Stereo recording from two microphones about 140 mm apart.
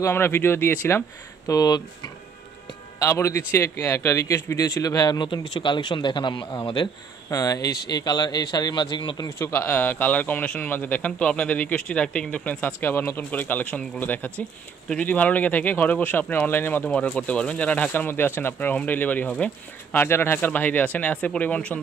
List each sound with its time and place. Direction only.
0.0 s speech: 15° left (ahead or behind)
1.5 s speech: 25° left (ahead or behind)
3.0 s speech: 20° left (ahead or behind)
9.4 s speech: 15° left (ahead or behind)